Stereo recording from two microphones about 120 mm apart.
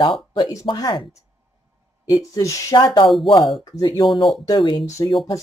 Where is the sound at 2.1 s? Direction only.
30° left (ahead or behind).